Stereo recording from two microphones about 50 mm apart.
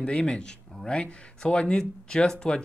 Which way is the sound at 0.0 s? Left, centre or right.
Left.